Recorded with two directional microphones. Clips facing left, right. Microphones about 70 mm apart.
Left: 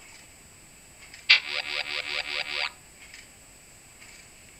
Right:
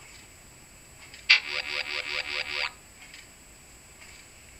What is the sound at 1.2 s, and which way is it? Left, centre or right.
Music, centre.